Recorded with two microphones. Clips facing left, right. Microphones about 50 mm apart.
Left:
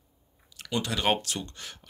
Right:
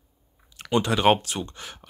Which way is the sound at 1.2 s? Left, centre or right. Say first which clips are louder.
Right 4 dB; right.